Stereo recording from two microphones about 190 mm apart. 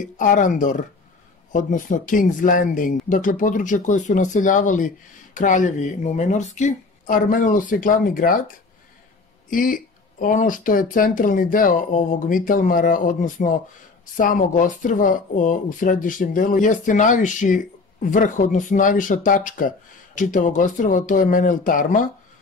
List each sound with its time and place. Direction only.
0.0 s speech: 45° left (ahead or behind)
9.5 s speech: 45° left (ahead or behind)